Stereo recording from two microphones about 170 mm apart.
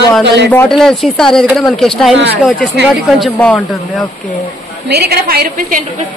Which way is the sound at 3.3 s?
10° left (ahead or behind).